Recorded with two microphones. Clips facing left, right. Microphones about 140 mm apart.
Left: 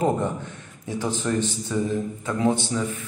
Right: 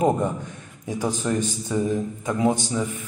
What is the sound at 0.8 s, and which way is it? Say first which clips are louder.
A man's voice: right 1 dB; 15° right (ahead or behind).